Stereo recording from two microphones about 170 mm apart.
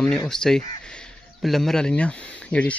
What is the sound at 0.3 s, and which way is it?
Speech, 5° left (ahead or behind).